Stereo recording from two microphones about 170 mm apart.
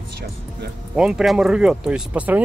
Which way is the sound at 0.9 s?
5° right (ahead or behind).